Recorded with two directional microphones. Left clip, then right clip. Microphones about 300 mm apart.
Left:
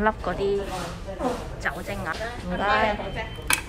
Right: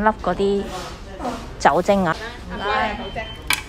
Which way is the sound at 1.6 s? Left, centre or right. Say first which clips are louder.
Right 19 dB; centre.